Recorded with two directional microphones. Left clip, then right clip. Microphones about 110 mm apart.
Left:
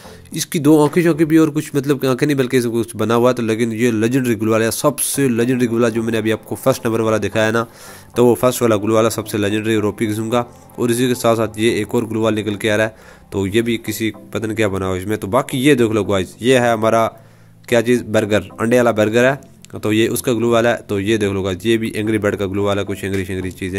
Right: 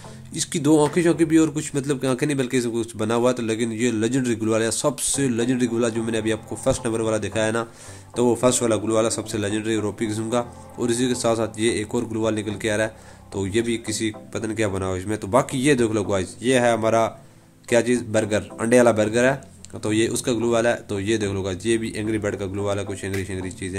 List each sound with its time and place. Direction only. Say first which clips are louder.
0.3 s a man's voice: left 6 dB; 35° left (ahead or behind)
16.3 s speech: left 5 dB; 55° left (ahead or behind)
17.6 s a man's voice: left 5 dB; 45° left (ahead or behind)